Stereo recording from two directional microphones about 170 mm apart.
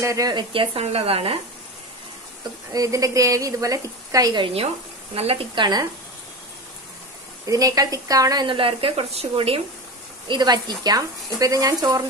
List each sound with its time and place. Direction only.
0.0 s speech: 20° right (ahead or behind)
2.7 s a woman's voice: 20° right (ahead or behind)
7.4 s a woman's voice: 20° right (ahead or behind); by 9.6 s 35° right (ahead or behind)
10.2 s a woman's voice: 25° right (ahead or behind)